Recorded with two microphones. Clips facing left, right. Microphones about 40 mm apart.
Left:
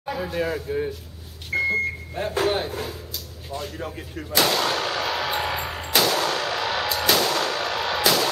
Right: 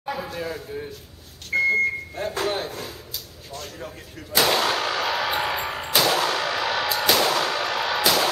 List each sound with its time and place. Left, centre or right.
0.0 s a sound: centre
0.3 s speech: centre
1.5 s vehicle: centre
2.1 s speech: centre
4.5 s gunshot: centre